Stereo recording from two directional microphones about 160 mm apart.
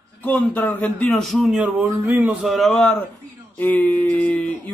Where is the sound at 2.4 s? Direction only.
Centre (ahead or behind).